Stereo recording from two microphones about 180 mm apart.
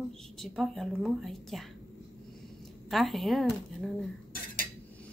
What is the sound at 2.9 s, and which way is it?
Speech, centre (ahead or behind).